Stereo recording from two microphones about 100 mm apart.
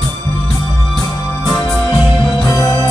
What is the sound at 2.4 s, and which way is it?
Music, 35° left (ahead or behind).